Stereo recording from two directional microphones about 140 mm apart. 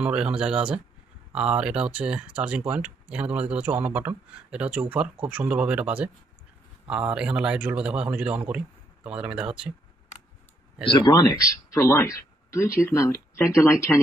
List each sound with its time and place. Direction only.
0.0 s a man's voice: 5° right (ahead or behind)
10.9 s speech: 30° left (ahead or behind)